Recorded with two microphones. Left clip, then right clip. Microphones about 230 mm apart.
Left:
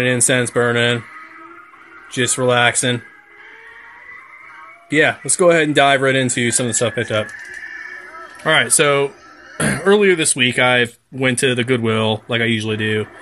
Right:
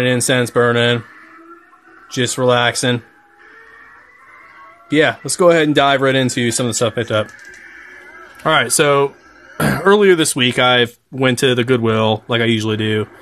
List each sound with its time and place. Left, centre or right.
0.0 s speech: centre
2.1 s speech: centre
4.8 s speech: centre
8.5 s speech: centre